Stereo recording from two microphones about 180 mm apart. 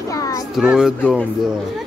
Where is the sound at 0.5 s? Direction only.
5° right (ahead or behind).